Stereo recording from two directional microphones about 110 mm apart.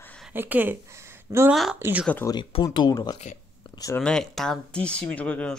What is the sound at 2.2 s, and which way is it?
Speech, 25° left (ahead or behind).